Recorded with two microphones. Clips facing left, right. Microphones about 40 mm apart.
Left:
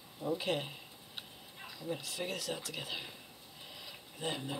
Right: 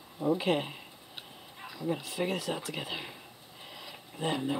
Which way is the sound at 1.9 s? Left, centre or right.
Right.